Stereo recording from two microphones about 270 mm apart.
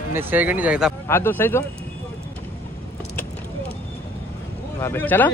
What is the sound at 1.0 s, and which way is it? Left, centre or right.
Speech, centre.